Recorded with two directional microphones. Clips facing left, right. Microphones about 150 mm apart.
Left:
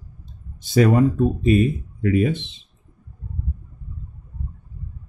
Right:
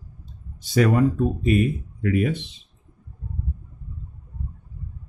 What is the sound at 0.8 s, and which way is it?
Speech, 25° left (ahead or behind).